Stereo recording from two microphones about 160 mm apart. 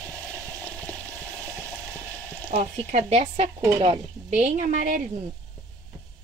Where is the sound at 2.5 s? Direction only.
50° right (ahead or behind).